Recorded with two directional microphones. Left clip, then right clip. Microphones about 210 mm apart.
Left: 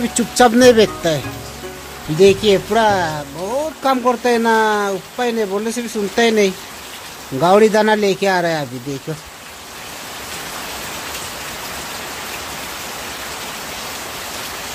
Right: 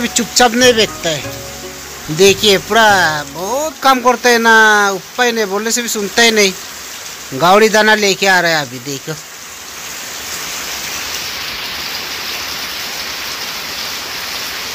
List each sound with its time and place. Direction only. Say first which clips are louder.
0.3 s speech: even; 20° left (ahead or behind)
2.1 s speech: right 2 dB; 5° left (ahead or behind)
3.3 s a sound: right 3 dB; 15° right (ahead or behind)
4.1 s speech: right 6 dB; 5° right (ahead or behind)